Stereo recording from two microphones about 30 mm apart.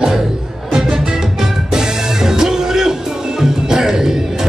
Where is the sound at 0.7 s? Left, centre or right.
Right.